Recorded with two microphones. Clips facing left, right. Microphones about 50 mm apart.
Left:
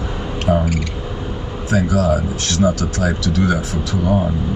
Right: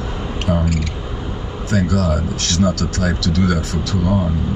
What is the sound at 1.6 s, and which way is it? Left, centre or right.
Speech, centre.